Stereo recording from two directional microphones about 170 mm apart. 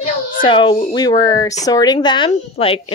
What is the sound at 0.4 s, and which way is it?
Speech, 30° left (ahead or behind).